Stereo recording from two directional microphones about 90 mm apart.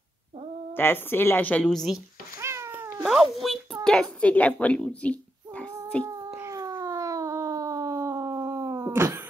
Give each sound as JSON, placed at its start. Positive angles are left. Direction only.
{"t": 0.7, "sound": "speech", "side_deg": 25}
{"t": 1.7, "sound": "speech", "side_deg": 5}
{"t": 2.3, "sound": "cat", "side_deg": -30}
{"t": 3.0, "sound": "speech", "side_deg": 0}
{"t": 6.4, "sound": "a sound", "side_deg": -40}
{"t": 8.9, "sound": "a sound", "side_deg": -25}